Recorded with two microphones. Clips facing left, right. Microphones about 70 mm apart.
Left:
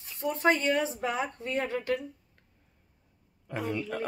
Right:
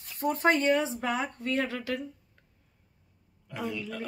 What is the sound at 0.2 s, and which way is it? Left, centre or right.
Speech, right.